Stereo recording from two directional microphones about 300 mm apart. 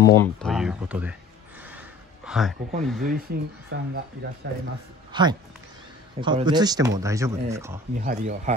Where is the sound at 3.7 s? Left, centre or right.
Right.